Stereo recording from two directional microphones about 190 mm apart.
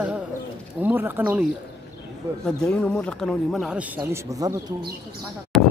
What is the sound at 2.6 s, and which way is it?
Speech, 5° left (ahead or behind).